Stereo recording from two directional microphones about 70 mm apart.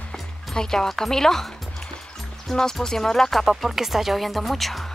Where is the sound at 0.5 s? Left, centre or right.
Centre.